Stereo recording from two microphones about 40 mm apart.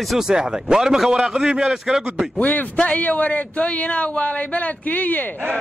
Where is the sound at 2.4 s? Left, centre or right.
Left.